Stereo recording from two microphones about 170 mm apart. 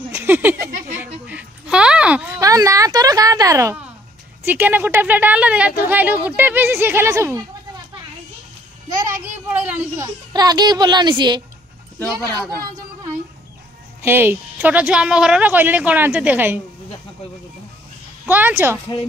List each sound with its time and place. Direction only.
0.1 s speech: 10° right (ahead or behind)
1.2 s a sound: 5° right (ahead or behind)
4.5 s speech: 10° right (ahead or behind)
9.0 s a sound: 15° right (ahead or behind)
10.0 s a child's voice: 25° right (ahead or behind)
14.0 s speech: 15° right (ahead or behind)
18.2 s speech: 10° right (ahead or behind)